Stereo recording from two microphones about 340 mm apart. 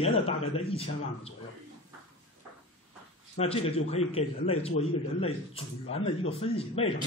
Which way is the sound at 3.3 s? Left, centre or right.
Centre.